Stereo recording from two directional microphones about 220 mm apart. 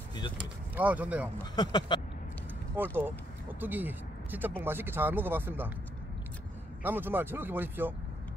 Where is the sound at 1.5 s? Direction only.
20° left (ahead or behind).